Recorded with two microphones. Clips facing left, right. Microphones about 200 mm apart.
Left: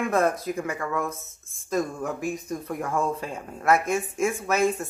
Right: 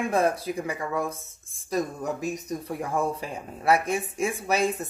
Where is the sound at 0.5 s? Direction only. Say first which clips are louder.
Left 1 dB; 15° right (ahead or behind).